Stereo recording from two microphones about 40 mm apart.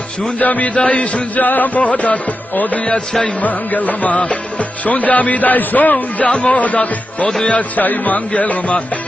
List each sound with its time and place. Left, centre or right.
0.2 s music: left
1.4 s music: left
6.2 s music: left